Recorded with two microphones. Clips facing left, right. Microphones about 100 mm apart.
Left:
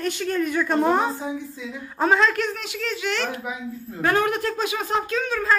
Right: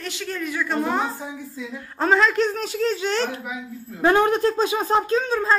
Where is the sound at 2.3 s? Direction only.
30° right (ahead or behind).